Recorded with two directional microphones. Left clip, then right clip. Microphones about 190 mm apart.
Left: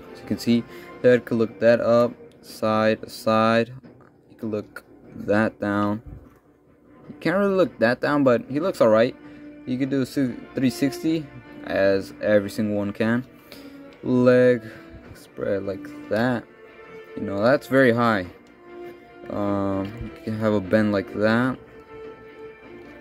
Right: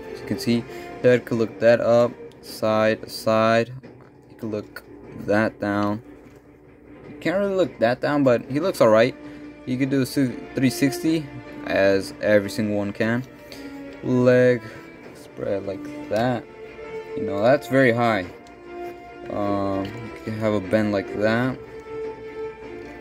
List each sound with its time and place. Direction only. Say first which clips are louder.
0.1 s speech: even; 15° left (ahead or behind)
7.2 s speech: left 1 dB; 25° left (ahead or behind)
19.3 s speech: right 1 dB; 20° left (ahead or behind)